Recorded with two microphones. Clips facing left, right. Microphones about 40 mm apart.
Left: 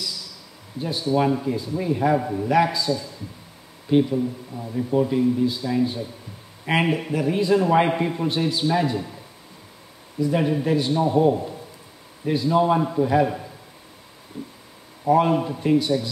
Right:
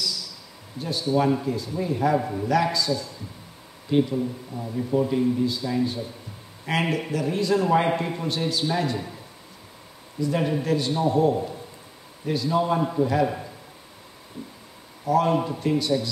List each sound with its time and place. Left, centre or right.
0.7 s a man's voice: centre
2.1 s a man's voice: centre
2.4 s a man's voice: centre
3.9 s a man's voice: centre
10.2 s a man's voice: centre
15.0 s a man's voice: left